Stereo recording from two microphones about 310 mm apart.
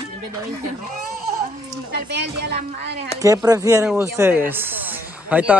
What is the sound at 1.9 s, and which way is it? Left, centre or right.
Speech, right.